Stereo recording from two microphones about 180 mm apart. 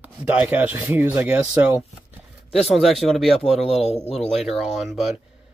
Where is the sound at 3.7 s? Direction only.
35° left (ahead or behind).